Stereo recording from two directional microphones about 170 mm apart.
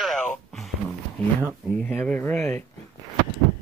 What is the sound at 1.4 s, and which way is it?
Speech, 10° right (ahead or behind).